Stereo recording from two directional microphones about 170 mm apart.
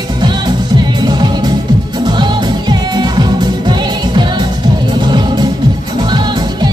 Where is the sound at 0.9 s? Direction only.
25° right (ahead or behind).